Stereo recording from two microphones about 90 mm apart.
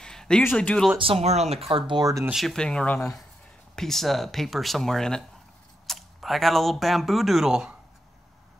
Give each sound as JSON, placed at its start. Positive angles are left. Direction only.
{"t": 0.0, "sound": "a sound", "side_deg": 5}
{"t": 0.5, "sound": "speech", "side_deg": 15}
{"t": 0.9, "sound": "speech", "side_deg": -90}
{"t": 2.0, "sound": "speech", "side_deg": -40}
{"t": 2.3, "sound": "speech", "side_deg": 5}